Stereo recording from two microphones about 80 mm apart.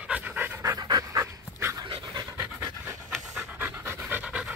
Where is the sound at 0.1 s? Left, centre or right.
Centre.